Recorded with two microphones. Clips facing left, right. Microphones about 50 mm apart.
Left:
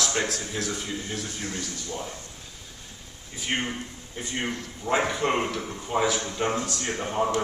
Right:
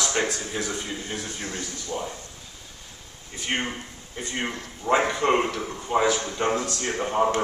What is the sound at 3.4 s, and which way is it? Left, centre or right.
Speech, centre.